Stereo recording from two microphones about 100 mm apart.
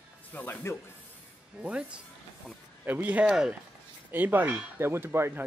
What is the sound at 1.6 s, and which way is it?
Speech, 10° right (ahead or behind).